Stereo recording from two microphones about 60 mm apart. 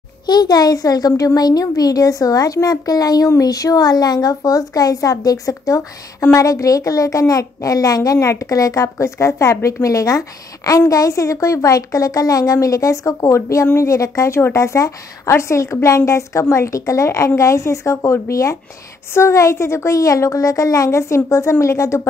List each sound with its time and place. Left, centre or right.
0.5 s speech: left
3.3 s a woman's voice: left
8.2 s a woman's voice: left